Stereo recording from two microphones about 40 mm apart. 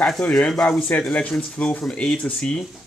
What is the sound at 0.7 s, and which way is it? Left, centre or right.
Speech, left.